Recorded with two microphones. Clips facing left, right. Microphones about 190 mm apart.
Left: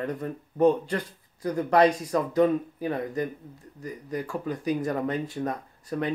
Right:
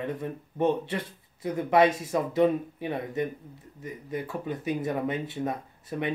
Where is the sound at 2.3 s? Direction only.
25° right (ahead or behind).